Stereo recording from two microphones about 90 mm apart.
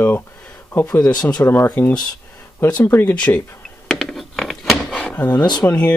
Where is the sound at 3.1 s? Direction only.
15° left (ahead or behind).